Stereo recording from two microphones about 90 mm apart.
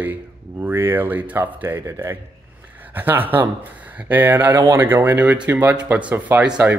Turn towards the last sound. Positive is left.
turn(degrees=-20)  # may be behind; listen again after turning